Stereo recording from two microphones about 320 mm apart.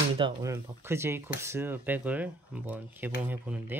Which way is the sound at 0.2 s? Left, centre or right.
Centre.